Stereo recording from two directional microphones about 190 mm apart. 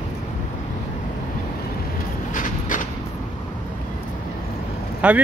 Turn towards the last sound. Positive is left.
turn(degrees=-5)  # may be behind; listen again after turning